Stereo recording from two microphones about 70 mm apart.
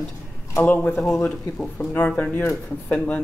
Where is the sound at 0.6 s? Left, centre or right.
Left.